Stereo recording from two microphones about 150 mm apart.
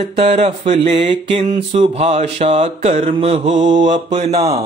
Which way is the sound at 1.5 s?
40° right (ahead or behind).